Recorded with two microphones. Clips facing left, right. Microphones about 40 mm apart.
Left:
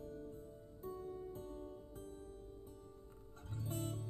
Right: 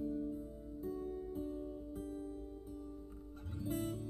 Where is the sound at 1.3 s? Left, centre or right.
Centre.